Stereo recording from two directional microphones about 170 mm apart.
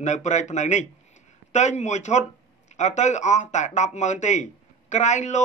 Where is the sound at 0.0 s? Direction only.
45° left (ahead or behind).